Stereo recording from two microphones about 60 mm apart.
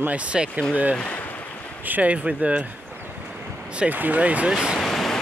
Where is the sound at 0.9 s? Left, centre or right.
Left.